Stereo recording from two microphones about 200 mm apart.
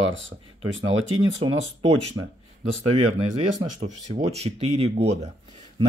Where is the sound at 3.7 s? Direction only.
35° right (ahead or behind).